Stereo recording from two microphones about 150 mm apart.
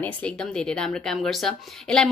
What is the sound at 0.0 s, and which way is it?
Speech, 5° left (ahead or behind).